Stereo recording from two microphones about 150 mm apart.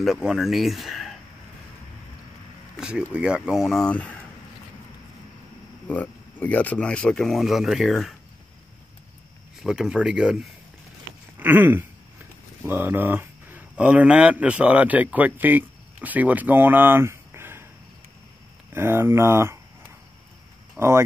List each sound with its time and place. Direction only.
0.0 s speech: centre (ahead or behind)
2.8 s speech: 5° right (ahead or behind)
5.9 s speech: 10° left (ahead or behind)
9.6 s speech: 5° right (ahead or behind)
11.3 s a sound: 15° right (ahead or behind)
12.6 s speech: 15° right (ahead or behind)
18.7 s speech: 15° right (ahead or behind)
20.7 s speech: 15° right (ahead or behind)